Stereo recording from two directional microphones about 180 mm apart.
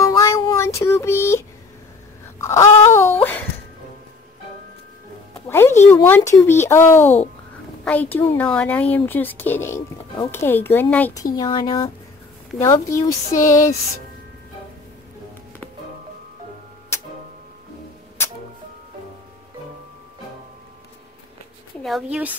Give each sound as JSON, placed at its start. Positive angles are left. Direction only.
{"t": 0.2, "sound": "child singing", "side_deg": 15}
{"t": 2.3, "sound": "wail", "side_deg": 15}
{"t": 3.2, "sound": "a sound", "side_deg": 10}
{"t": 5.5, "sound": "speech", "side_deg": 15}
{"t": 11.3, "sound": "speech", "side_deg": 25}
{"t": 21.8, "sound": "speech", "side_deg": -5}